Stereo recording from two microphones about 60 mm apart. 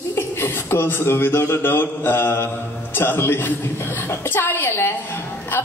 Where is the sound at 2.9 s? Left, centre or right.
Left.